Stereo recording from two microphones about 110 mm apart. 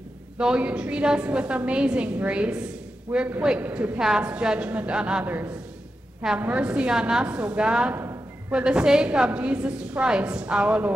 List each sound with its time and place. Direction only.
0.4 s a woman's voice: 10° right (ahead or behind)
7.9 s a sound: 25° right (ahead or behind)
8.5 s a woman's voice: 10° right (ahead or behind)